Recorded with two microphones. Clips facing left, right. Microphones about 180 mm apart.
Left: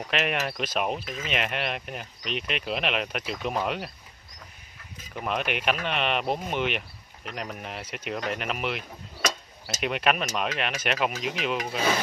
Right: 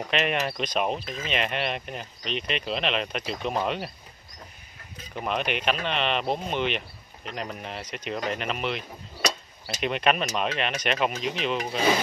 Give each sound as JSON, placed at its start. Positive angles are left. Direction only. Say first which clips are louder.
{"t": 0.1, "sound": "speech", "louder": "right 1 dB", "side_deg": 5}
{"t": 1.0, "sound": "speech", "louder": "right 1 dB", "side_deg": -35}
{"t": 1.3, "sound": "speech", "louder": "right 2 dB", "side_deg": 5}
{"t": 5.2, "sound": "speech", "louder": "right 1 dB", "side_deg": 5}